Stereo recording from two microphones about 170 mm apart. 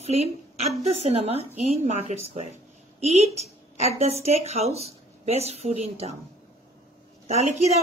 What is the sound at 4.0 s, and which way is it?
Speech, 40° right (ahead or behind).